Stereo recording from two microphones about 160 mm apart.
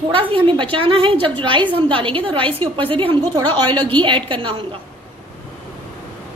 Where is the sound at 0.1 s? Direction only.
35° right (ahead or behind).